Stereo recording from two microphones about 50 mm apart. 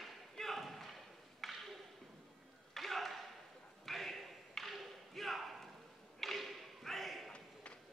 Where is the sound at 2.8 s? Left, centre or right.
Centre.